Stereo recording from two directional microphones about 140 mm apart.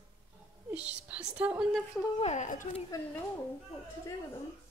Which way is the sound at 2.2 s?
55° left (ahead or behind).